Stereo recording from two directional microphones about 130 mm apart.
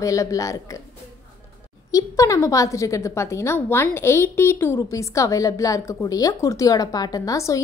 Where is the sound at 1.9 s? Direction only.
25° left (ahead or behind).